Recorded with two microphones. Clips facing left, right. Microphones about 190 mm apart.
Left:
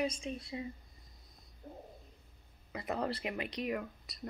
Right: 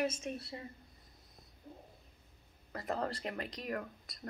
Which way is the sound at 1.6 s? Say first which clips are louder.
Left 3 dB; 55° left (ahead or behind).